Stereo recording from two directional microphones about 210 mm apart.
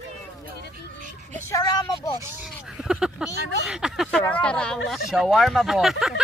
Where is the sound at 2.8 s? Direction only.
5° right (ahead or behind).